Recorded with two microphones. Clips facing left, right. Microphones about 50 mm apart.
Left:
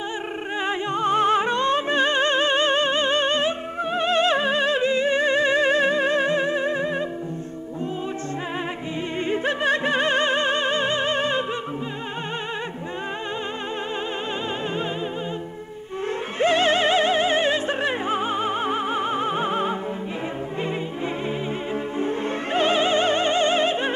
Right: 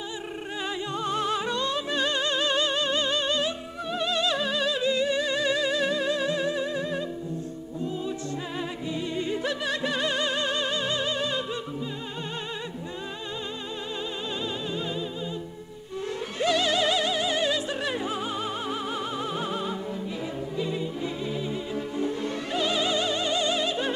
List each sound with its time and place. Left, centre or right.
0.7 s music: left
9.3 s music: left
16.3 s music: left
21.9 s music: left